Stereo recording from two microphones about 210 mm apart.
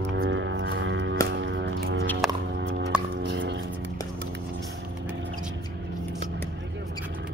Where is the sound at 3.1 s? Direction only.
55° right (ahead or behind).